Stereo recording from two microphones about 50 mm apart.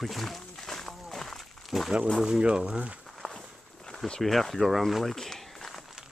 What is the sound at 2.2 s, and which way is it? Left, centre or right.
Speech, centre.